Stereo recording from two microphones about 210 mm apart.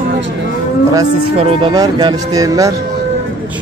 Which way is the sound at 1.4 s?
25° right (ahead or behind).